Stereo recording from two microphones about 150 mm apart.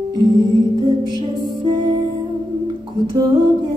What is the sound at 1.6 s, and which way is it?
Music, 30° right (ahead or behind).